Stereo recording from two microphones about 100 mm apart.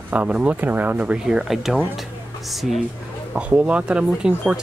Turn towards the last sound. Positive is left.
turn(degrees=-10)  # may be behind; listen again after turning